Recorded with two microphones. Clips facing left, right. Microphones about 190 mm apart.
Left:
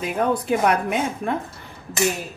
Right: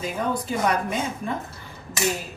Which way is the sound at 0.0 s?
60° left (ahead or behind).